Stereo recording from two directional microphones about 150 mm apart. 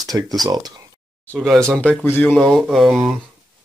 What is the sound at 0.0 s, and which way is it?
Speech, 25° right (ahead or behind).